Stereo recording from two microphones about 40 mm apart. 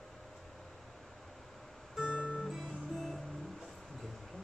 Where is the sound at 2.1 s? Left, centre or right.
Left.